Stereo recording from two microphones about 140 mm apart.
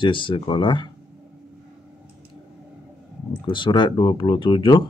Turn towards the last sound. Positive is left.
turn(degrees=35)  # may be behind; listen again after turning